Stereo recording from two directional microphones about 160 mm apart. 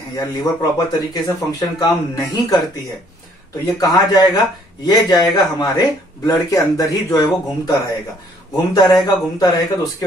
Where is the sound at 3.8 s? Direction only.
25° left (ahead or behind).